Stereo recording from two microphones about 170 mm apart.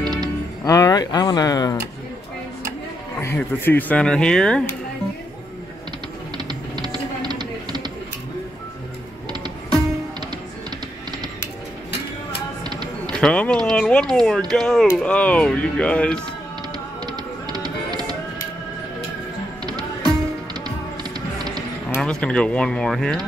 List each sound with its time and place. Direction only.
0.0 s music: 25° right (ahead or behind)
0.7 s speech: 20° left (ahead or behind)
3.2 s speech: 15° left (ahead or behind)
6.3 s music: 25° right (ahead or behind)
12.6 s a sound: 25° right (ahead or behind)
13.1 s speech: 5° left (ahead or behind)
17.0 s music: 25° right (ahead or behind)
19.6 s music: 25° right (ahead or behind)
22.0 s speech: 5° left (ahead or behind)